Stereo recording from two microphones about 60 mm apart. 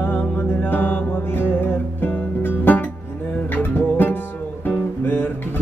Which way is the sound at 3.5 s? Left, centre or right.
Left.